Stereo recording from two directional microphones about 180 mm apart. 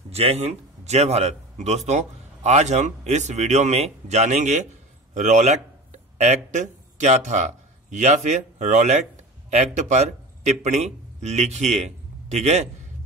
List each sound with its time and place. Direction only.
0.1 s a man's voice: 35° right (ahead or behind)